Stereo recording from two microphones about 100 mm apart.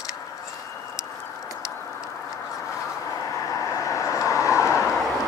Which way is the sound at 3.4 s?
30° left (ahead or behind).